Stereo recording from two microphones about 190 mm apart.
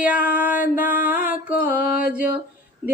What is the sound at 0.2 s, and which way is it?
Music, 50° left (ahead or behind).